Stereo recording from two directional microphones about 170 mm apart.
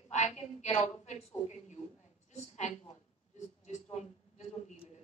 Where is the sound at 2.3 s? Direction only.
45° left (ahead or behind).